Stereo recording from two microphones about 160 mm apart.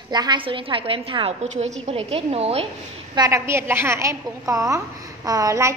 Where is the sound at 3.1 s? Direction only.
20° right (ahead or behind).